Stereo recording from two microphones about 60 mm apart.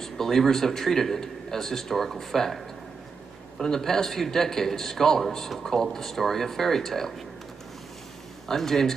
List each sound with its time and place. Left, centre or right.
0.0 s a man's voice: centre
8.5 s speech: centre